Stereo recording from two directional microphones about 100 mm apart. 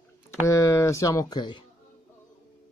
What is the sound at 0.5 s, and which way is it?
Speech, 30° left (ahead or behind).